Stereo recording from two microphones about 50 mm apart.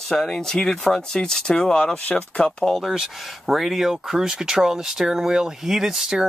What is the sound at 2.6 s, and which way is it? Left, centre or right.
Speech, centre.